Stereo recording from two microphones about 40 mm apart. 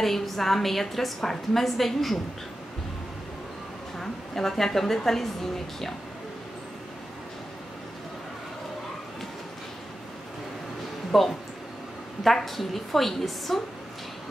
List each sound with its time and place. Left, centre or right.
0.0 s a woman's voice: centre
4.0 s a woman's voice: centre
11.1 s a woman's voice: centre